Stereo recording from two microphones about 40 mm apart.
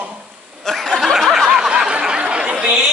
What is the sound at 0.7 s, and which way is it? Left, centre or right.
Snicker, centre.